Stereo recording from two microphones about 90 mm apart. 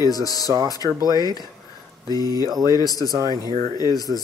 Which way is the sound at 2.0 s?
45° left (ahead or behind).